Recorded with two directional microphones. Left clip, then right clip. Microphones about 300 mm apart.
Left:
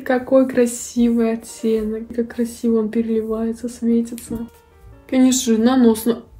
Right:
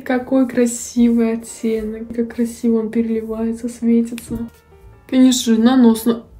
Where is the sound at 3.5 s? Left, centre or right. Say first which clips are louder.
Right 2 dB; left.